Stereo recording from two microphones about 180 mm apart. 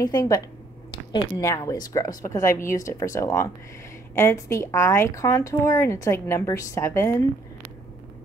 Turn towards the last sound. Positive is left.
turn(degrees=15)  # may be behind; listen again after turning